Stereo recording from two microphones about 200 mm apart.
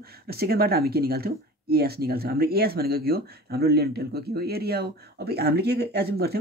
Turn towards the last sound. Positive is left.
turn(degrees=-55)  # may be behind; listen again after turning